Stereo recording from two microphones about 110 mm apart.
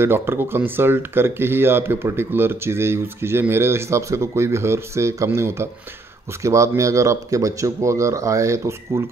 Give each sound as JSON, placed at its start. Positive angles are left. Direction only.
{"t": 0.0, "sound": "speech", "side_deg": -20}